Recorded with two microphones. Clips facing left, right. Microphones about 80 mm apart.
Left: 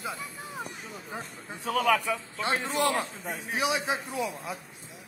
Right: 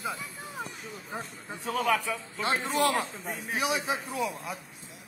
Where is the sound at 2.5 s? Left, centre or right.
Right.